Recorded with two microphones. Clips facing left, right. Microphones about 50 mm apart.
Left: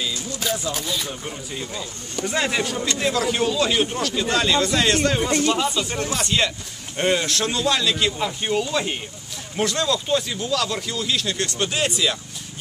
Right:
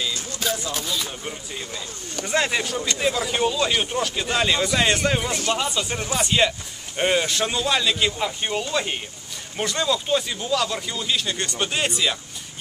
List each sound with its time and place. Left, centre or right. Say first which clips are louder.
1.2 s speech: left 2 dB; centre